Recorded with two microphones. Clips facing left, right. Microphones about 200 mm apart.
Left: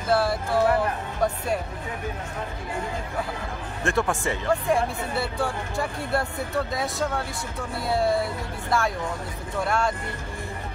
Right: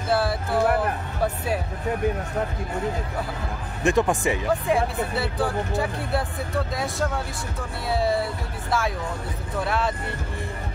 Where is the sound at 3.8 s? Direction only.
15° right (ahead or behind).